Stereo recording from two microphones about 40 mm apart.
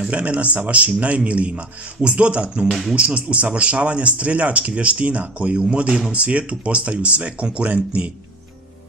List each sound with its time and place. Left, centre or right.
0.0 s speech: right